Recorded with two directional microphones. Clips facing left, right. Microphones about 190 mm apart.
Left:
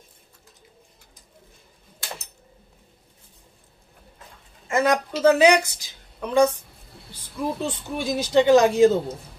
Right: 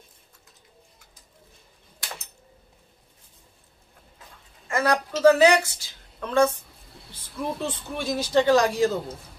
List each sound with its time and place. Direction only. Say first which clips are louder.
4.6 s a woman's voice: left 3 dB; 20° left (ahead or behind)
7.6 s speech: left 2 dB; 15° left (ahead or behind)